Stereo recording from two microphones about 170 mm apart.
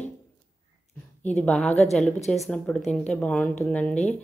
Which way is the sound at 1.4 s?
5° left (ahead or behind).